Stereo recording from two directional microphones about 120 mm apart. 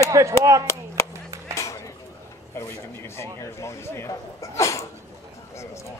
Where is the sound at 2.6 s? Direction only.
20° left (ahead or behind).